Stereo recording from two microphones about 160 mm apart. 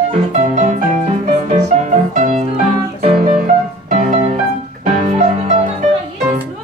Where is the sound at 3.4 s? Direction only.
50° right (ahead or behind).